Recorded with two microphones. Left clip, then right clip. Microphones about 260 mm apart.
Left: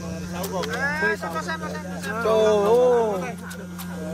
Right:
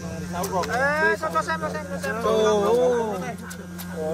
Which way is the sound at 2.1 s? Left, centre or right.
Left.